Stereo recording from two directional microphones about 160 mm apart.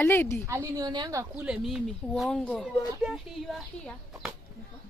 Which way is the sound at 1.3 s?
5° right (ahead or behind).